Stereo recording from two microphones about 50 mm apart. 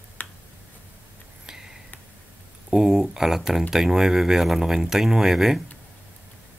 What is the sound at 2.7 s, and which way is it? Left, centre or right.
Speech, centre.